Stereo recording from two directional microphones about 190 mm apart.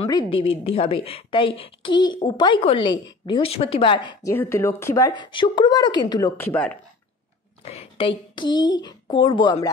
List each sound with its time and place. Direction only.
0.0 s a woman's voice: 30° left (ahead or behind); by 6.8 s 10° left (ahead or behind)
7.6 s speech: 30° left (ahead or behind)